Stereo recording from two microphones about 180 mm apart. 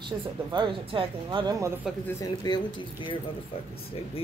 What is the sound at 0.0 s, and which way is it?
Speech, 25° right (ahead or behind).